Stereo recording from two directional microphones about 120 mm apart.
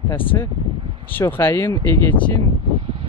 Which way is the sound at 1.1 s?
15° left (ahead or behind).